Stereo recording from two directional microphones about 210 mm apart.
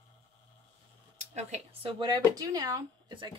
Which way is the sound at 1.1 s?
30° right (ahead or behind).